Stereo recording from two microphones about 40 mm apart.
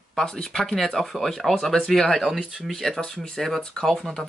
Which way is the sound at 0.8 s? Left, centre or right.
Centre.